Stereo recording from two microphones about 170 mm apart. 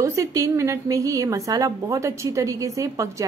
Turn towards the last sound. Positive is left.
turn(degrees=-20)  # may be behind; listen again after turning